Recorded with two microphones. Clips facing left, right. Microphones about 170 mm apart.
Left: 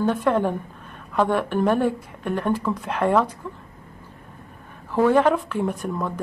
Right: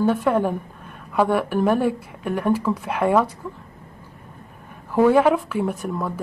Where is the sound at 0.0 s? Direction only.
5° right (ahead or behind).